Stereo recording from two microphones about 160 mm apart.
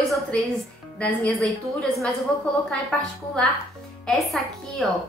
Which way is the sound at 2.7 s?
5° left (ahead or behind).